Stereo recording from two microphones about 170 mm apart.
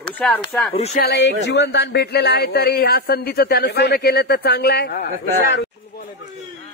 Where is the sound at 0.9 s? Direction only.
75° left (ahead or behind).